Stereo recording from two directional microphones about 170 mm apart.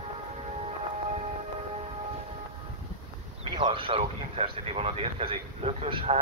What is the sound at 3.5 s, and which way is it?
Speech, 30° right (ahead or behind).